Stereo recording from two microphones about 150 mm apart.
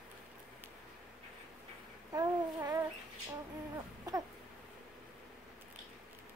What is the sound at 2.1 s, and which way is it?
Babbling, 25° right (ahead or behind).